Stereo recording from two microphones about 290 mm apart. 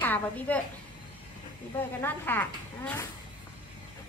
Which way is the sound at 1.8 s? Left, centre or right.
Centre.